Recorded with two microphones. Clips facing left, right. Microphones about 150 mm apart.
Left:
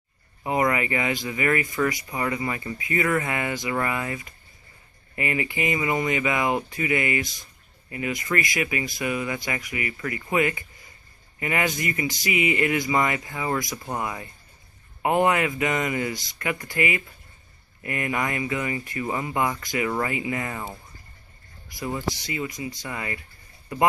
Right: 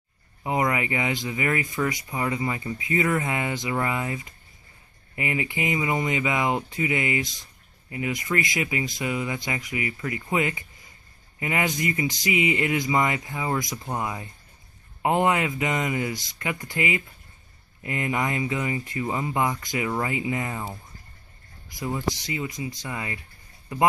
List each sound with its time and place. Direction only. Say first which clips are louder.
0.4 s speech: left 1 dB; 15° right (ahead or behind)